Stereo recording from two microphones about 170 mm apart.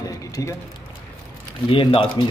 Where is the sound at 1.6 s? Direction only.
30° left (ahead or behind).